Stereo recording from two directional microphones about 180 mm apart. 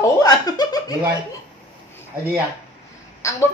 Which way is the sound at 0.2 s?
20° left (ahead or behind).